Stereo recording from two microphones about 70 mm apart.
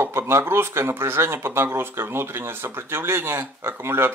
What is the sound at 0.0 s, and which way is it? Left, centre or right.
Speech, right.